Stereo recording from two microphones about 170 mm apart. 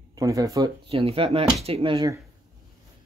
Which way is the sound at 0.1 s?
20° right (ahead or behind).